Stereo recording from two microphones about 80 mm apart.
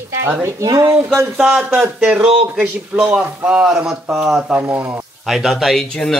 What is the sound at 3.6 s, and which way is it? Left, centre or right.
Speech, centre.